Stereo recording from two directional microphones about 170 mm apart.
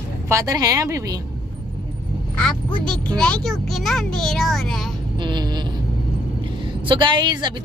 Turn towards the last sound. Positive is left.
turn(degrees=-25)  # may be behind; listen again after turning